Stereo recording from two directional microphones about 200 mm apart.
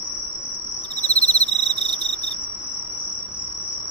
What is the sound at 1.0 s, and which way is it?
Cricket, 35° left (ahead or behind).